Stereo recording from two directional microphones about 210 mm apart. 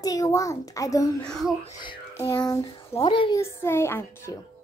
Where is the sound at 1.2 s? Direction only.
Centre (ahead or behind).